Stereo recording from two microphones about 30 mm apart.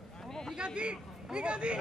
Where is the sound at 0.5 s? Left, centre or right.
Right.